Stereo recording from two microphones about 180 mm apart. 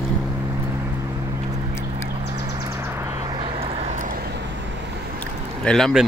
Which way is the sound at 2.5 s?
20° right (ahead or behind).